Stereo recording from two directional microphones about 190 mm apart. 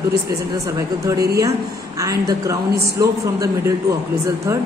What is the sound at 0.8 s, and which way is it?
Speech, 15° right (ahead or behind).